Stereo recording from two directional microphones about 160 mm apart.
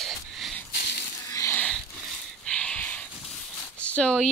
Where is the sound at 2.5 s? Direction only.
5° left (ahead or behind).